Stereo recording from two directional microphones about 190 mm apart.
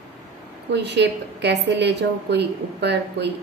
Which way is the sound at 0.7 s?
65° right (ahead or behind).